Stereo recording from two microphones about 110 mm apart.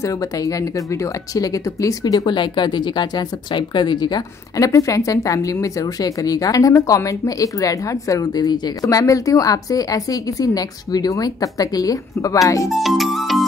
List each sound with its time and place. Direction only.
0.0 s speech: 30° left (ahead or behind)
12.6 s music: centre (ahead or behind)